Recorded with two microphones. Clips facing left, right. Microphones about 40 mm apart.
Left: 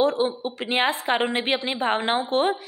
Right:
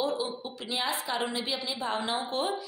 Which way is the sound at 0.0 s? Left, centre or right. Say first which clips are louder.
Left 9 dB; left.